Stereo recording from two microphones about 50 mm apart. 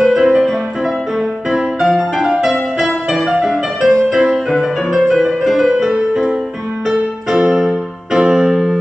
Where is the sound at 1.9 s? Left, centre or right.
Centre.